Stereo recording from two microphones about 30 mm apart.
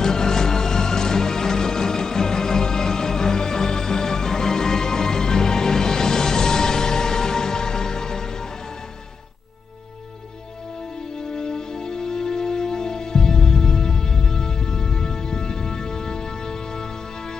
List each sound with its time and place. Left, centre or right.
0.0 s music: centre
11.8 s music: centre